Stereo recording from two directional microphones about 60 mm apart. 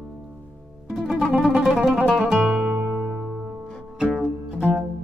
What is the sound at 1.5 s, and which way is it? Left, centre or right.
Music, centre.